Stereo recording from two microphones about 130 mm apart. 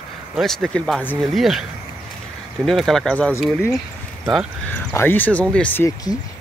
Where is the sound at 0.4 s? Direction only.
Centre (ahead or behind).